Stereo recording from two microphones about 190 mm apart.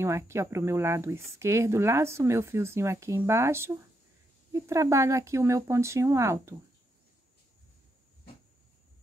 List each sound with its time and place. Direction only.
0.0 s speech: 15° right (ahead or behind)